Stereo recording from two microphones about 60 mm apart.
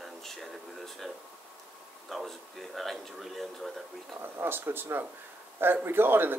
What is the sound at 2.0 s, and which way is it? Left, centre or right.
Speech, centre.